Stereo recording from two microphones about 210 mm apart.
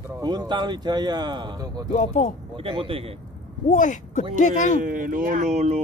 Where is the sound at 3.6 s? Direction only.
35° left (ahead or behind).